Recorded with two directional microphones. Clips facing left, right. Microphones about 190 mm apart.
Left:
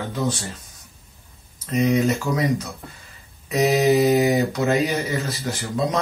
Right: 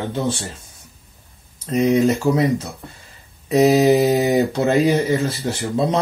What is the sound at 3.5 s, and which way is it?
Mantra, 30° right (ahead or behind).